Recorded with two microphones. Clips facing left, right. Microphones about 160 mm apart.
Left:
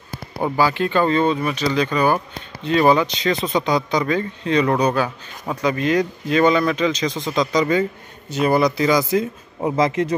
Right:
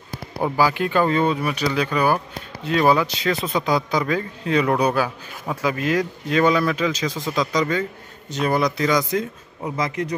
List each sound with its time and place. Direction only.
0.4 s a man's voice: 10° right (ahead or behind)
9.6 s speech: 30° left (ahead or behind)